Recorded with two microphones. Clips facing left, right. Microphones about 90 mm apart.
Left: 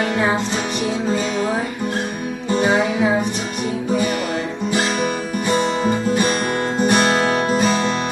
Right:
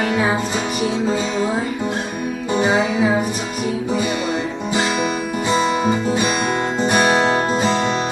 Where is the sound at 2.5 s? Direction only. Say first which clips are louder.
Left 1 dB; 15° right (ahead or behind).